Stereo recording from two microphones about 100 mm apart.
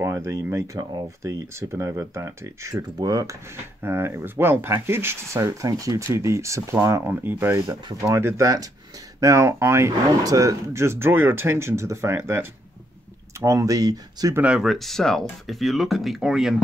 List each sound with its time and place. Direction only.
0.0 s speech: 30° right (ahead or behind)
3.8 s speech: 25° right (ahead or behind)
14.4 s speech: 5° right (ahead or behind)